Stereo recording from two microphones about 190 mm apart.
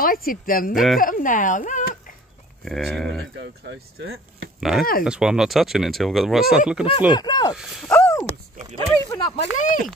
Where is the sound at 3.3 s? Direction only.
70° right (ahead or behind); by 4.5 s 90° right.